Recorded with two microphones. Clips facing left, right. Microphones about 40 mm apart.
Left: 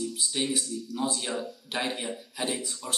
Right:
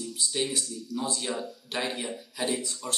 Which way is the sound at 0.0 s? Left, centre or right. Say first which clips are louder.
Even; centre.